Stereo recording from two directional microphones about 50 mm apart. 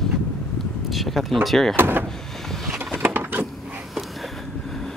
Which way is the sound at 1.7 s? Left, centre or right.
Right.